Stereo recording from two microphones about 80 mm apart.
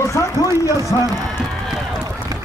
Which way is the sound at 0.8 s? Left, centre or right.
Left.